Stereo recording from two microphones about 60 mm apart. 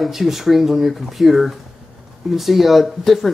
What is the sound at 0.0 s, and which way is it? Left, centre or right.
Speech, centre.